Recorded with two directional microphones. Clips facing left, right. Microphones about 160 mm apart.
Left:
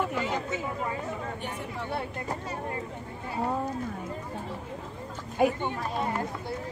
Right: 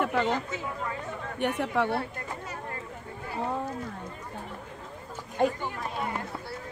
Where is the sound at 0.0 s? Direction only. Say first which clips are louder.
Right 3 dB; 65° right (ahead or behind).